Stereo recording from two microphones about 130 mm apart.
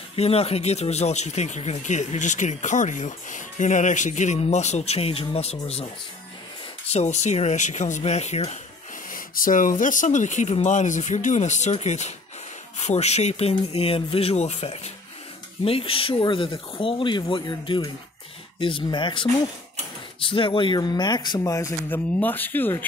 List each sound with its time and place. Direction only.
0.1 s speech: 50° left (ahead or behind)
6.9 s speech: 60° left (ahead or behind)
9.1 s speech: 90° left; by 14.8 s 55° left (ahead or behind)
15.6 s speech: 45° left (ahead or behind)
20.2 s speech: 40° left (ahead or behind)
21.5 s speech: 20° left (ahead or behind)